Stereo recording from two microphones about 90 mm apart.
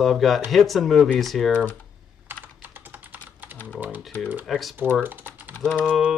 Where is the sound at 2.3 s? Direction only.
20° right (ahead or behind).